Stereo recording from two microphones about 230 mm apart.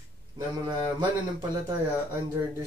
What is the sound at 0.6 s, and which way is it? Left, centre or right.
Speech, centre.